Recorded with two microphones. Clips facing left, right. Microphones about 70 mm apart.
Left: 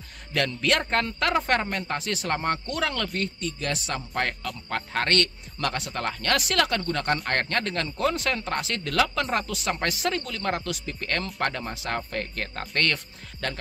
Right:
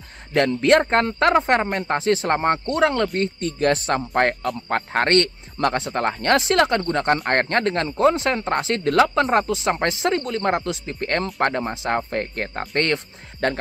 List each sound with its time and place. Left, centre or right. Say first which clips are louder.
0.3 s speech: right 9 dB; right
1.7 s speech: right 6 dB; right
2.0 s speech: right 12 dB; right
3.2 s speech: right 8 dB; right